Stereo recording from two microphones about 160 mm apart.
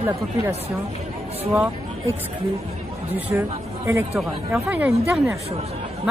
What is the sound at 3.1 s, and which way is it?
Speech, 10° right (ahead or behind).